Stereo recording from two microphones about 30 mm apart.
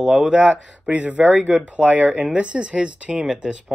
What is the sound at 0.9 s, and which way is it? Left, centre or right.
Speech, right.